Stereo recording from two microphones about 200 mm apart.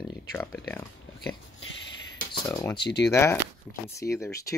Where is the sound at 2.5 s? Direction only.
20° left (ahead or behind).